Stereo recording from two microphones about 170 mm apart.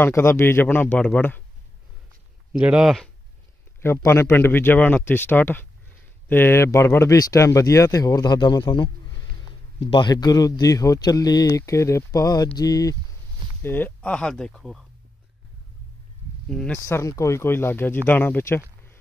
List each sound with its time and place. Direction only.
0.0 s speech: 15° left (ahead or behind)
2.5 s speech: 5° right (ahead or behind)
3.8 s speech: 15° left (ahead or behind)
16.4 s speech: 5° left (ahead or behind)